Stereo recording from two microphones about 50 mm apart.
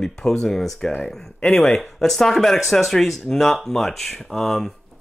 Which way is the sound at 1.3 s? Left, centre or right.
Left.